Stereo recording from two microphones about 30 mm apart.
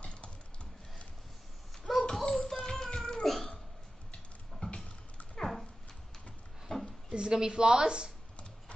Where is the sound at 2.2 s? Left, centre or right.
Centre.